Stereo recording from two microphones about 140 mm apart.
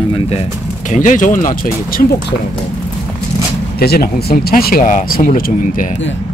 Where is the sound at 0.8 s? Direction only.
65° left (ahead or behind); by 1.7 s 80° left.